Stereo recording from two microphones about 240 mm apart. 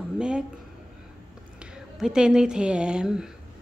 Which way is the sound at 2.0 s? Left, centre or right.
Centre.